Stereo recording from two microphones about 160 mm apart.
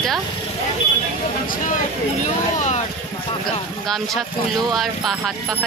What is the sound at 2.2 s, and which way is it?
Speech, 45° left (ahead or behind).